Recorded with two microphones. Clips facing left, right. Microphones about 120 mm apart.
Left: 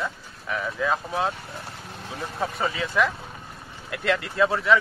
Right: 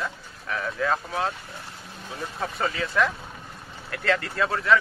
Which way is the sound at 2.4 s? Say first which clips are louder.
Left 1 dB; 15° left (ahead or behind).